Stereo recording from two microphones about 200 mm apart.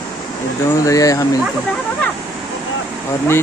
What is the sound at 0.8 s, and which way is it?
Speech, 15° left (ahead or behind).